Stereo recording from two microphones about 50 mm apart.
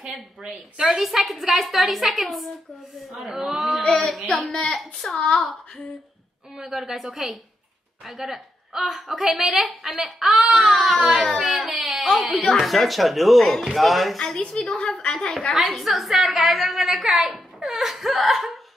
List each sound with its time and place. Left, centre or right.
0.8 s a woman's voice: centre
3.8 s a woman's voice: centre
5.1 s a child's voice: left
6.5 s a woman's voice: centre
15.3 s a woman's voice: centre